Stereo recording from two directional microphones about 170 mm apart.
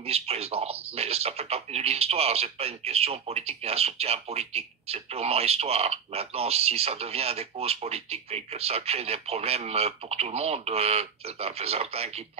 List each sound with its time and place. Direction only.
0.0 s speech: 35° right (ahead or behind)